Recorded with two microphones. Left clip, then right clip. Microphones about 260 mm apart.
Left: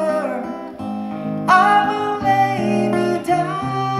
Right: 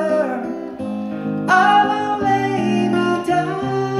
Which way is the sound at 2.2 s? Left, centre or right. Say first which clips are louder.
Left 2 dB; centre.